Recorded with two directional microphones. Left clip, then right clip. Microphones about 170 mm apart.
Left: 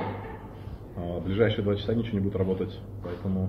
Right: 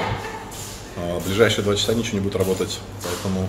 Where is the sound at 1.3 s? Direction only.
15° right (ahead or behind).